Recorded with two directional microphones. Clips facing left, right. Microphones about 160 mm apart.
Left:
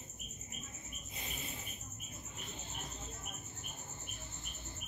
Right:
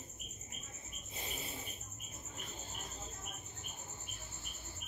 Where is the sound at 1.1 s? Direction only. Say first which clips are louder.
Right 2 dB; 35° right (ahead or behind).